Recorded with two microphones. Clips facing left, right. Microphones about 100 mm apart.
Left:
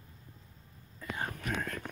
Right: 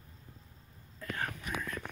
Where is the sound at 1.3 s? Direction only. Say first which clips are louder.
Left 2 dB; 55° left (ahead or behind).